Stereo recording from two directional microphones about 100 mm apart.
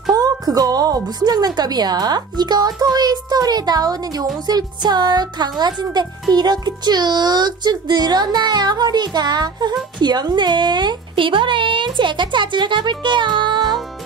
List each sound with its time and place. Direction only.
0.1 s speech: 40° right (ahead or behind)